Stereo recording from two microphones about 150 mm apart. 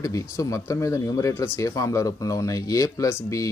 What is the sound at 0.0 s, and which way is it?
Speech, 20° left (ahead or behind).